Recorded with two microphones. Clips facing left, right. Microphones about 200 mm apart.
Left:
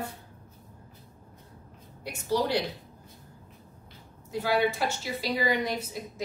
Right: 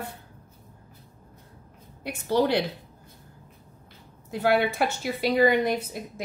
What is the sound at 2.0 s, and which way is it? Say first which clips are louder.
Speech: right 4 dB; 55° right (ahead or behind).